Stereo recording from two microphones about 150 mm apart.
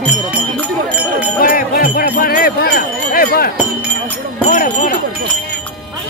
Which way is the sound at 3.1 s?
85° left.